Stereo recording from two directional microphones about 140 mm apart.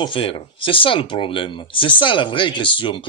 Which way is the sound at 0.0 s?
40° left (ahead or behind).